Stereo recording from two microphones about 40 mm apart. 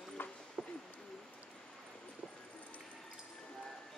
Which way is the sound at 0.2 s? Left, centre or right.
Left.